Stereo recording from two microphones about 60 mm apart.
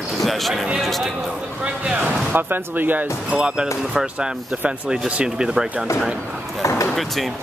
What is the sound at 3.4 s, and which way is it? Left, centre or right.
Speech, centre.